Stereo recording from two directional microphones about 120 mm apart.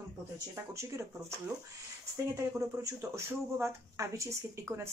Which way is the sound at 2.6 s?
25° right (ahead or behind).